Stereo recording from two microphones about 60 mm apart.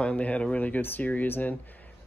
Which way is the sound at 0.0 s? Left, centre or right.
Left.